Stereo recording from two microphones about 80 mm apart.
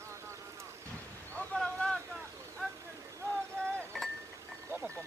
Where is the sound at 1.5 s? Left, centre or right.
Centre.